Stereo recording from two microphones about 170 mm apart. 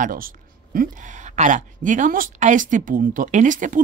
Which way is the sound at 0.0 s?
55° right (ahead or behind).